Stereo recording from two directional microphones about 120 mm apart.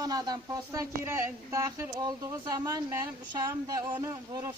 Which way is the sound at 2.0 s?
35° right (ahead or behind).